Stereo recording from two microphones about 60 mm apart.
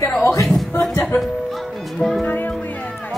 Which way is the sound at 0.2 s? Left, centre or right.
Left.